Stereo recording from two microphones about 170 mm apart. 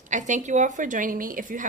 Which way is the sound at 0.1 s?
45° right (ahead or behind).